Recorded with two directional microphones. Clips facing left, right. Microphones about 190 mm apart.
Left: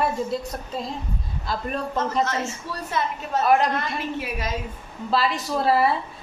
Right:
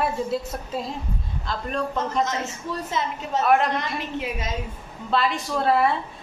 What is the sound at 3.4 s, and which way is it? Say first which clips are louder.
Speech: left 1 dB; centre (ahead or behind).